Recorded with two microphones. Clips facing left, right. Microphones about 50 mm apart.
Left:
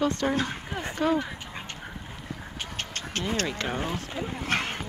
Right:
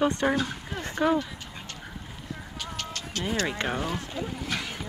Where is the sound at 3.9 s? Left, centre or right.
Centre.